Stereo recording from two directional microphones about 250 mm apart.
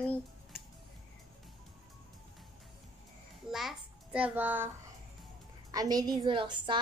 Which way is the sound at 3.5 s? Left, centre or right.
Centre.